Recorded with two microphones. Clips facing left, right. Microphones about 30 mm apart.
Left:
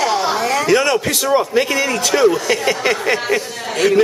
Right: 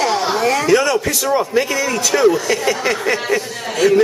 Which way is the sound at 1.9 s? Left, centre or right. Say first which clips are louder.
Right 1 dB; centre.